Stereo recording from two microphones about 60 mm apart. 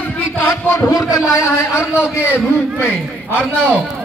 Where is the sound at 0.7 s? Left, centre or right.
Left.